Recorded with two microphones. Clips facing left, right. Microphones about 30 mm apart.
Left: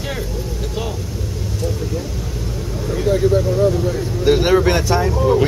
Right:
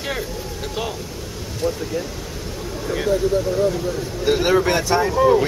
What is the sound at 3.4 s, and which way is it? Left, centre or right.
Speech, centre.